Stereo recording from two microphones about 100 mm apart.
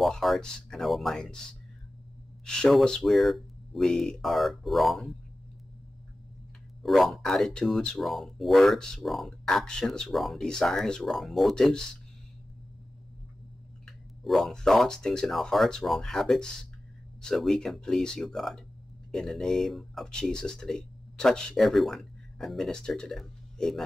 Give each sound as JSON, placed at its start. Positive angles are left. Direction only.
{"t": 0.0, "sound": "speech", "side_deg": 0}
{"t": 6.8, "sound": "speech", "side_deg": 0}
{"t": 13.8, "sound": "speech", "side_deg": 0}